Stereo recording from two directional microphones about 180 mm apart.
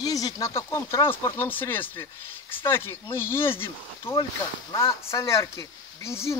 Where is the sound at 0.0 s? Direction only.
20° left (ahead or behind).